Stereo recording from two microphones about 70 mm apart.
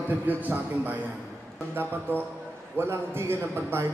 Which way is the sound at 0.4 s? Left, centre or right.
Right.